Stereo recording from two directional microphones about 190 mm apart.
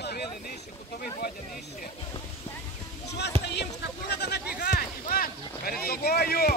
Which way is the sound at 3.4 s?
60° left (ahead or behind).